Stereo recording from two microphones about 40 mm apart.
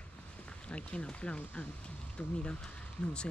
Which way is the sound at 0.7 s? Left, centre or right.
Left.